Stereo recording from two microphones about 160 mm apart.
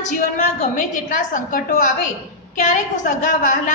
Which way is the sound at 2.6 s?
50° left (ahead or behind).